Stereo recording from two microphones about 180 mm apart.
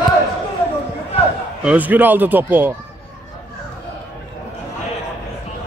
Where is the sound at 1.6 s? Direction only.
5° right (ahead or behind).